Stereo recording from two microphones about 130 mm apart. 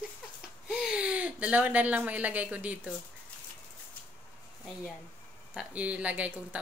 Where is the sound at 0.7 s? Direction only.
10° right (ahead or behind).